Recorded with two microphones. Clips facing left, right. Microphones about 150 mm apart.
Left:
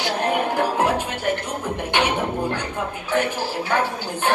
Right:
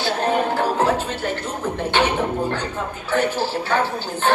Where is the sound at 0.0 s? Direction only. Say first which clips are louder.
Right 2 dB; 15° left (ahead or behind).